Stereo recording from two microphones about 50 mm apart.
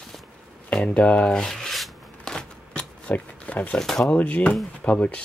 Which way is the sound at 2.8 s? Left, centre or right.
Left.